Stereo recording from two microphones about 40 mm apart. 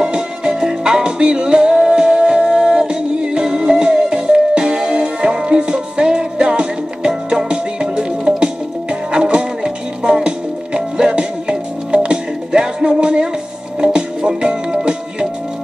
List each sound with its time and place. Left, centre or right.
0.0 s music: right